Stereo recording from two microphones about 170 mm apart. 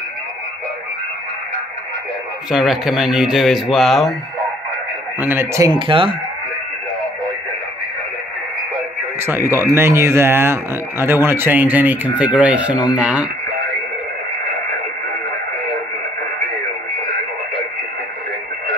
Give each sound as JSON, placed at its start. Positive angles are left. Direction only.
{"t": 2.5, "sound": "speech", "side_deg": 0}
{"t": 5.2, "sound": "speech", "side_deg": -15}
{"t": 5.8, "sound": "speech", "side_deg": -30}
{"t": 9.2, "sound": "speech", "side_deg": -15}